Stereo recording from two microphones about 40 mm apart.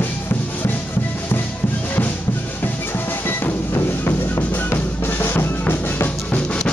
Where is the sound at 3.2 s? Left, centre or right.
Left.